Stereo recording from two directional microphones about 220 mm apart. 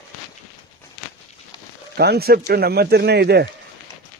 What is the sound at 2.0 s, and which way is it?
Speech, 45° right (ahead or behind).